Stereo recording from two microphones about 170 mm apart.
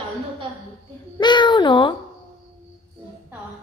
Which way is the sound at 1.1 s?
25° left (ahead or behind).